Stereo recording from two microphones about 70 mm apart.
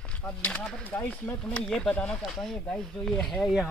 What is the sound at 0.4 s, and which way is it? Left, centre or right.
Speech, centre.